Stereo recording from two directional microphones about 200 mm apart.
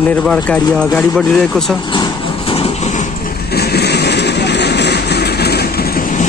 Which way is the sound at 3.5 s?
55° left (ahead or behind).